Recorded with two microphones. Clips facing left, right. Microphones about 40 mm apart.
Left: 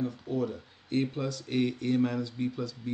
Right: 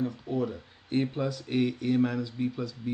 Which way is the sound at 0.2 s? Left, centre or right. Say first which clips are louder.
Right 1 dB; centre.